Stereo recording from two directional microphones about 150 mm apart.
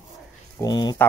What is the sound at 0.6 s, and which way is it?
Speech, 30° left (ahead or behind).